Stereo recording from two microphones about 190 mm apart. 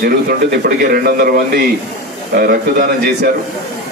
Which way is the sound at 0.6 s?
50° right (ahead or behind).